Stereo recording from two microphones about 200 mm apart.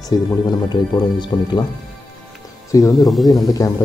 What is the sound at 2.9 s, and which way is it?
Speech, centre (ahead or behind).